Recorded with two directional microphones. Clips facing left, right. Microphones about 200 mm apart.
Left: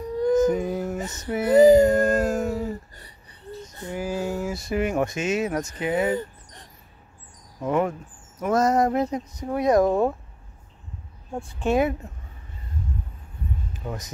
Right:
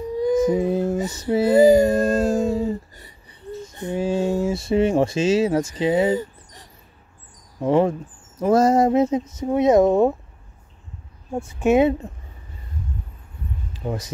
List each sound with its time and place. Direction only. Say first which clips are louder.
0.2 s music: even; 10° right (ahead or behind)
0.6 s a sound: right 6 dB; 30° right (ahead or behind)
1.0 s female singing: right 6 dB; 10° right (ahead or behind)
1.3 s a sound: right 1 dB; 30° right (ahead or behind)
3.6 s speech: right 6 dB; 20° right (ahead or behind)
7.6 s speech: right 5 dB; 30° right (ahead or behind)
11.7 s speech: right 5 dB; 25° right (ahead or behind)
13.7 s speech: right 10 dB; 30° right (ahead or behind)